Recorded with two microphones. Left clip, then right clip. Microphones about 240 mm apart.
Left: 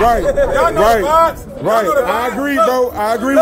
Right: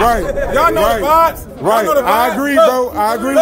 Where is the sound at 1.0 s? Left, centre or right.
Right.